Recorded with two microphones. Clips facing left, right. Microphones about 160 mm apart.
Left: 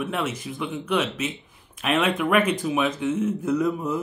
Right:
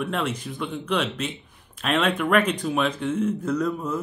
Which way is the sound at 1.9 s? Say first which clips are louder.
Even; 5° left (ahead or behind).